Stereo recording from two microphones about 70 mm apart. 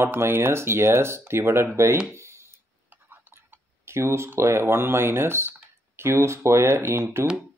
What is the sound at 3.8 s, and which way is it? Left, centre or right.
Speech, right.